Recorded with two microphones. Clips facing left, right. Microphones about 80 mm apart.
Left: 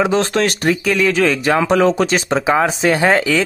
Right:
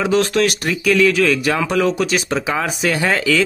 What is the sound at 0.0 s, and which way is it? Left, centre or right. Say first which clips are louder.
Speech: even; left.